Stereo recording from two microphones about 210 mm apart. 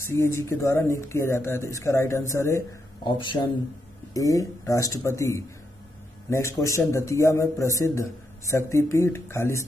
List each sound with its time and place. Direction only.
0.0 s speech: 10° left (ahead or behind)